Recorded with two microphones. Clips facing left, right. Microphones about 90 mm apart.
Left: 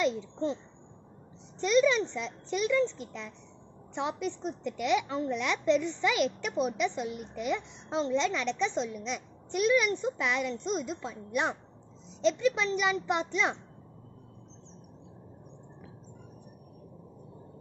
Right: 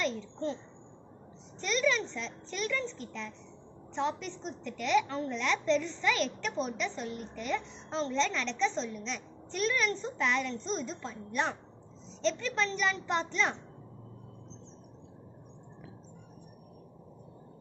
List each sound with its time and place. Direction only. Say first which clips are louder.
0.0 s a woman's voice: left 4 dB; 20° left (ahead or behind)
1.6 s a woman's voice: left 5 dB; 20° left (ahead or behind)